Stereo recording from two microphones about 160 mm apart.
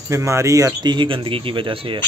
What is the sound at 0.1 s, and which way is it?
Speech, 20° right (ahead or behind).